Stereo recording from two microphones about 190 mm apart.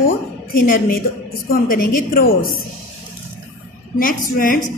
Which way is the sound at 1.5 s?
50° left (ahead or behind).